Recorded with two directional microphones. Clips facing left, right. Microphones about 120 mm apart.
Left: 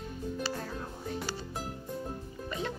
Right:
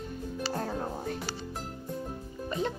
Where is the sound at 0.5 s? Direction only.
50° right (ahead or behind).